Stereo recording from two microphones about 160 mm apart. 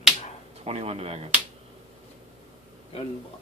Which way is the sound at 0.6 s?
40° right (ahead or behind).